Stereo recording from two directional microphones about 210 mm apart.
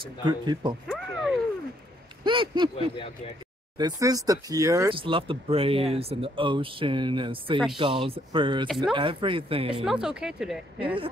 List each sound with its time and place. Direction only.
0.2 s speech: 20° right (ahead or behind)
0.8 s a sound: centre (ahead or behind)
2.2 s speech: 20° right (ahead or behind)
3.7 s speech: 20° right (ahead or behind)
8.6 s speech: centre (ahead or behind)
8.9 s speech: 25° right (ahead or behind)
9.8 s speech: 5° right (ahead or behind)